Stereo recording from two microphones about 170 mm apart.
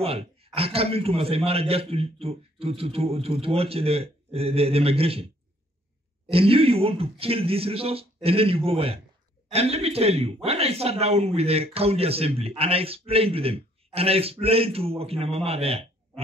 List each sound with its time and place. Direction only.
0.0 s a man's voice: 35° right (ahead or behind)
6.3 s a man's voice: 35° right (ahead or behind)